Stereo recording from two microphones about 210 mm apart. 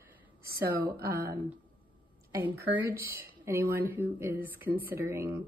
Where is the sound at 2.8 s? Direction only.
45° right (ahead or behind).